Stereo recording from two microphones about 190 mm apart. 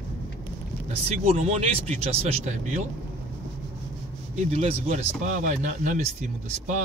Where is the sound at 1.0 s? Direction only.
35° right (ahead or behind).